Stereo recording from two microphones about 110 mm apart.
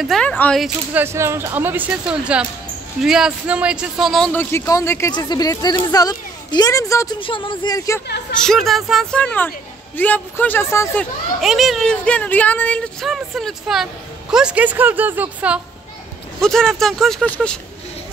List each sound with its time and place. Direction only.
0.2 s speech: 10° left (ahead or behind)
0.9 s speech: 25° right (ahead or behind); by 4.3 s centre (ahead or behind)
4.3 s a man's voice: 20° left (ahead or behind)
5.1 s speech: 35° left (ahead or behind)
7.2 s speech: 50° left (ahead or behind)
7.7 s a man's voice: 30° left (ahead or behind)
8.4 s speech: 5° left (ahead or behind)
9.2 s a man's voice: 10° left (ahead or behind)
11.4 s speech: centre (ahead or behind)
13.0 s speech: centre (ahead or behind)
16.3 s speech: 5° left (ahead or behind)